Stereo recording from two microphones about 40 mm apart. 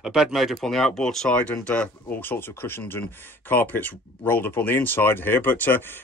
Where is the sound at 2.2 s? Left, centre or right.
Left.